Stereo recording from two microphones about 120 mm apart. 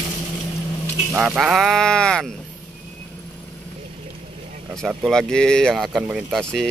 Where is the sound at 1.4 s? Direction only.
Centre (ahead or behind).